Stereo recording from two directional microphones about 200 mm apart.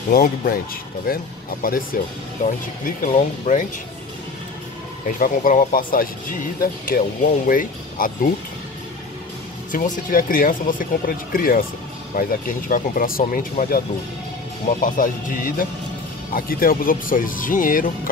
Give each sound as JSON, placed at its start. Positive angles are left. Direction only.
{"t": 0.1, "sound": "speech", "side_deg": 45}
{"t": 5.0, "sound": "speech", "side_deg": 45}
{"t": 9.7, "sound": "speech", "side_deg": 40}